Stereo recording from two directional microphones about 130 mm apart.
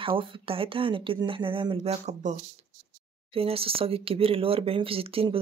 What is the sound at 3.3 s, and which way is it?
Speech, 45° right (ahead or behind).